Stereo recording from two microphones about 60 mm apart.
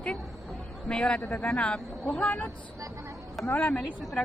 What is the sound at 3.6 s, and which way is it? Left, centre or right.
Speech, centre.